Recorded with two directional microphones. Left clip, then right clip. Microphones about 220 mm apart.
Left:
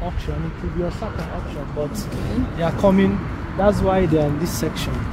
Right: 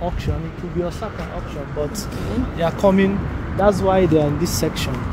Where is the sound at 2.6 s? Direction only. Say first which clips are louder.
Right 1 dB; 25° right (ahead or behind).